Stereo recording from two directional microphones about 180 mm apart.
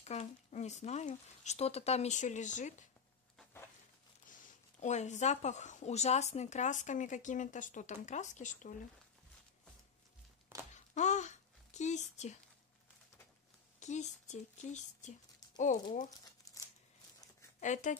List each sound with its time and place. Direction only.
0.0 s speech: 40° left (ahead or behind)
4.3 s speech: 40° left (ahead or behind)
11.0 s a sound: 40° left (ahead or behind)
13.7 s speech: 40° left (ahead or behind)
16.5 s a sound: 20° left (ahead or behind)
17.6 s speech: 45° left (ahead or behind)